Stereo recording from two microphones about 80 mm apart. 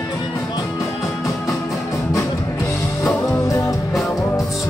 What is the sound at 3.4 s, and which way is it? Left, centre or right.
Music, left.